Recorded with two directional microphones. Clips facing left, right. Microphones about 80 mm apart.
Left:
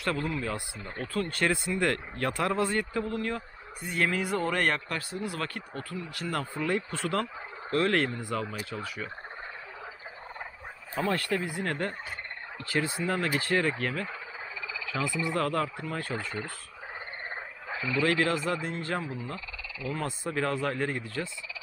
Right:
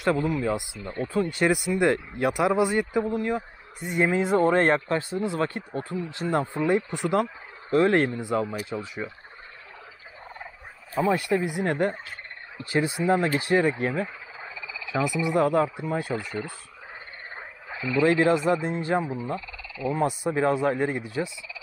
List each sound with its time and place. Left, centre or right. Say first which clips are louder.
0.0 s speech: right 7 dB; centre
11.1 s speech: right 6 dB; centre
17.6 s a sound: right 2 dB; centre
17.9 s speech: right 6 dB; right